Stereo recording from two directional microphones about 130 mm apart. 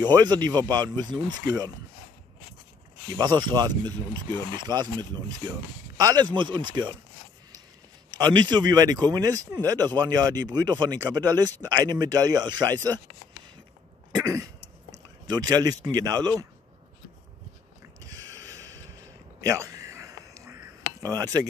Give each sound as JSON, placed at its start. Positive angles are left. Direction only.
{"t": 0.0, "sound": "speech", "side_deg": -35}
{"t": 3.2, "sound": "speech", "side_deg": -35}
{"t": 8.2, "sound": "speech", "side_deg": -35}
{"t": 14.2, "sound": "speech", "side_deg": -25}
{"t": 18.0, "sound": "a sound", "side_deg": -30}
{"t": 21.0, "sound": "speech", "side_deg": -30}